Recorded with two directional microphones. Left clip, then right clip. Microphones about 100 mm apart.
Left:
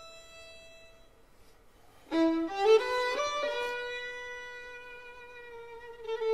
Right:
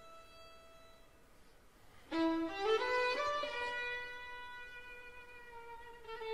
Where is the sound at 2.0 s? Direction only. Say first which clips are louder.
Left 7 dB; 45° left (ahead or behind).